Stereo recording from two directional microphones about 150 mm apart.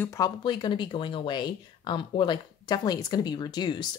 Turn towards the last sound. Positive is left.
turn(degrees=30)  # may be behind; listen again after turning